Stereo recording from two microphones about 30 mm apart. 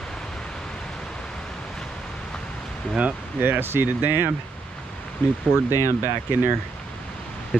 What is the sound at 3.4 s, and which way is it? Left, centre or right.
Speech, right.